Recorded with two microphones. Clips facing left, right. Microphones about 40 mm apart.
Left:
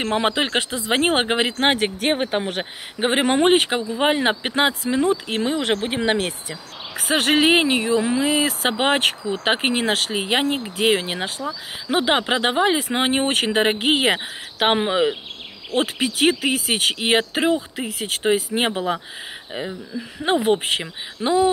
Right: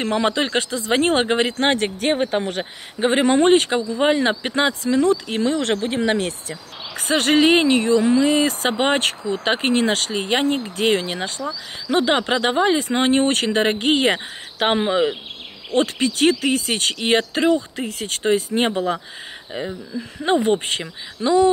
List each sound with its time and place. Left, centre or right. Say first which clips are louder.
0.1 s speech: right 1 dB; centre
21.2 s speech: right 2 dB; left